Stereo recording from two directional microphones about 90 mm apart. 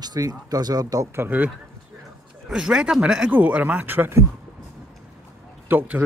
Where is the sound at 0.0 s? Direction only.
45° right (ahead or behind).